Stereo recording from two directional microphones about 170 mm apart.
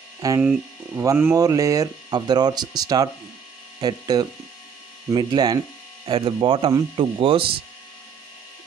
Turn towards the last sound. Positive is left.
turn(degrees=-30)  # may be behind; listen again after turning